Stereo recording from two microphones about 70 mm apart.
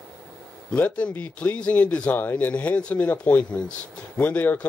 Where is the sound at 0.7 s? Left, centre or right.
Centre.